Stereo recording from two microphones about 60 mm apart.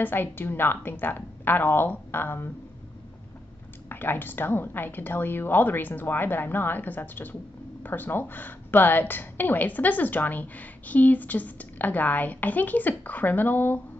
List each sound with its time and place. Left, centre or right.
0.0 s speech: left
3.9 s a woman's voice: left